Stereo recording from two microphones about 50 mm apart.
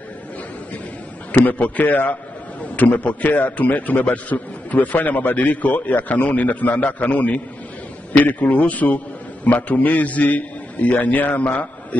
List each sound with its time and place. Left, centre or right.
1.3 s a man's voice: left